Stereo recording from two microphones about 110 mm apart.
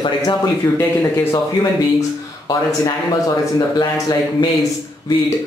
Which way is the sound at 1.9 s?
40° left (ahead or behind).